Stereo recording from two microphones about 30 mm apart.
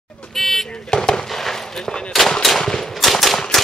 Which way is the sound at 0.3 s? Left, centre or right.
Centre.